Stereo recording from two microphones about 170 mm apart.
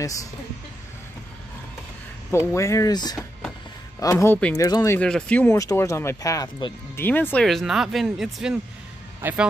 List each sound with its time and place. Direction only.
0.0 s speech: 20° left (ahead or behind)
2.3 s speech: 15° left (ahead or behind)
4.6 s speech: 20° left (ahead or behind)
4.9 s speech: 5° left (ahead or behind)
7.1 s a man's voice: 10° left (ahead or behind); by 9.5 s 10° right (ahead or behind)